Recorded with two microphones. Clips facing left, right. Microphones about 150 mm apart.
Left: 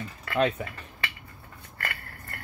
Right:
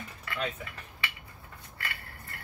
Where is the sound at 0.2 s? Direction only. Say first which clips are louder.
Left 10 dB; 55° left (ahead or behind).